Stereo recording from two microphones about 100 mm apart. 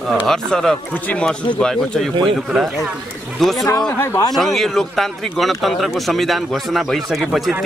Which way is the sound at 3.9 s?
30° left (ahead or behind).